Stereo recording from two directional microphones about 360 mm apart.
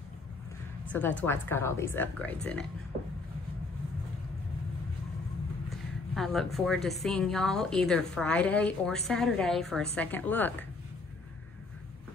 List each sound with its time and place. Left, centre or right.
0.9 s a woman's voice: centre
5.7 s a woman's voice: centre